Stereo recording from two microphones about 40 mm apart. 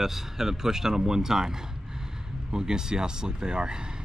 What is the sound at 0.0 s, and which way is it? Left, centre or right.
Speech, centre.